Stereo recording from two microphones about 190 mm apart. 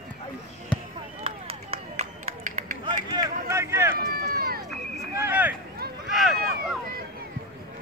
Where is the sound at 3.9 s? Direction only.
55° right (ahead or behind).